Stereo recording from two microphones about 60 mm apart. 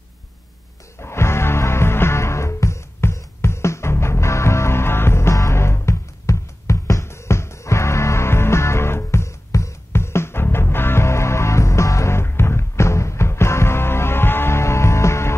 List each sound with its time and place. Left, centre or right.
1.0 s music: left